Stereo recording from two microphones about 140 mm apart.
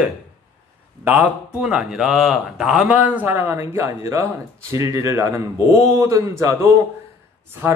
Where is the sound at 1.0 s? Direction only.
10° right (ahead or behind).